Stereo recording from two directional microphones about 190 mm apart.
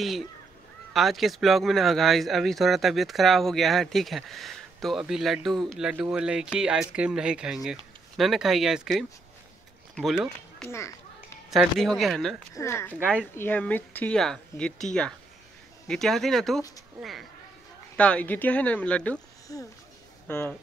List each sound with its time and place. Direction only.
0.0 s speech: centre (ahead or behind)
10.7 s children playing: 15° left (ahead or behind)
11.5 s speech: centre (ahead or behind)
12.5 s speech: 15° left (ahead or behind)
19.5 s speech: 15° left (ahead or behind)